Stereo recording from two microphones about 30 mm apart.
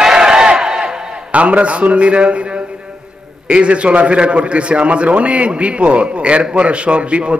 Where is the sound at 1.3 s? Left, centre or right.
Right.